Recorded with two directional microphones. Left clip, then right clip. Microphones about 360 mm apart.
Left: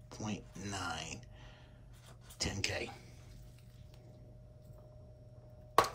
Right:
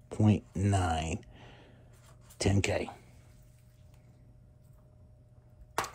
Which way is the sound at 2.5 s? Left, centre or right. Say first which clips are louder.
Right 9 dB; centre.